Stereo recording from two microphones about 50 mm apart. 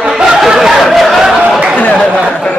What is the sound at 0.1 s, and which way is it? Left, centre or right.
Snicker, centre.